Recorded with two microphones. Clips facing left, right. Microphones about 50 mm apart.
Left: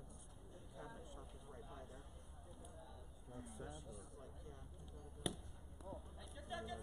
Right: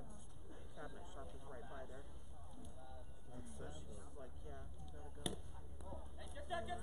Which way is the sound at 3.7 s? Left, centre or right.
Right.